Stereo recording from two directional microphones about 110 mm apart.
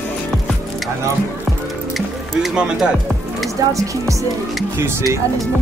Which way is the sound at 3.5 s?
30° right (ahead or behind).